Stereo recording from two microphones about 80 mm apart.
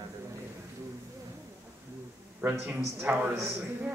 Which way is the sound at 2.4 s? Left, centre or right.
Centre.